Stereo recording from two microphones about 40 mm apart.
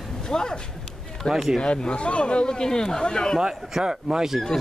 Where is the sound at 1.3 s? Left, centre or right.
Centre.